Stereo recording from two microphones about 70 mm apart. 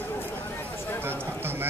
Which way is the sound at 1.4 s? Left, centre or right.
Right.